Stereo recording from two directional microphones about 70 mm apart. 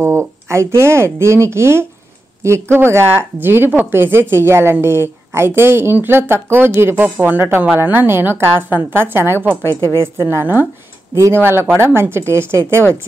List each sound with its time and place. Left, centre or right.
0.0 s a woman's voice: right